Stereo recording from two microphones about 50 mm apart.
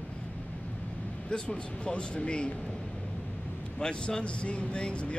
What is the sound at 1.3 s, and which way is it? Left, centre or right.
Speech, centre.